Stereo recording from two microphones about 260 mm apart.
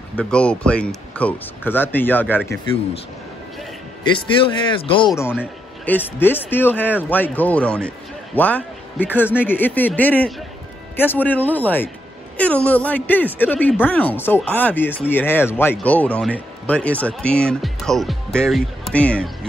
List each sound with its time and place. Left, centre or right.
0.1 s speech: centre
4.4 s speech: centre